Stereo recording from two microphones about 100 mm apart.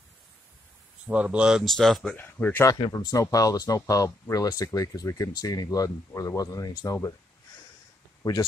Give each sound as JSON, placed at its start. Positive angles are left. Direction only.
{"t": 1.0, "sound": "speech", "side_deg": -15}
{"t": 2.1, "sound": "speech", "side_deg": 20}
{"t": 2.7, "sound": "speech", "side_deg": 40}
{"t": 8.2, "sound": "speech", "side_deg": 40}